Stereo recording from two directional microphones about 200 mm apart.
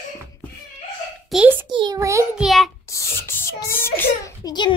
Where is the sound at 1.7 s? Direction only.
20° right (ahead or behind).